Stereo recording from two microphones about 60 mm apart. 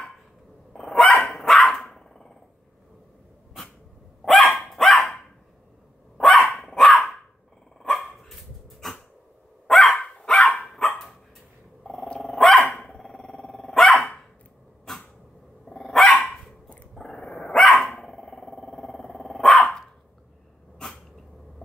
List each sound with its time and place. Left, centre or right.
0.7 s dog: centre
4.2 s dog: centre
6.1 s dog: centre
9.9 s dog: centre
10.7 s dog: centre
14.9 s a sound: centre
15.6 s dog: centre